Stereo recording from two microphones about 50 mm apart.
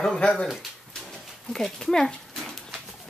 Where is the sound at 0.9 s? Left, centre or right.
Centre.